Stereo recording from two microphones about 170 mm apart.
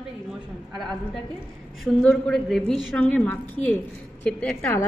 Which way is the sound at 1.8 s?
5° left (ahead or behind).